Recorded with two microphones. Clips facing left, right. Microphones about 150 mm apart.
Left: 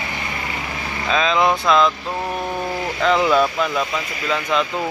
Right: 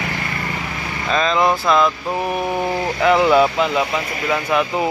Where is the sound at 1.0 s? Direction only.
Centre (ahead or behind).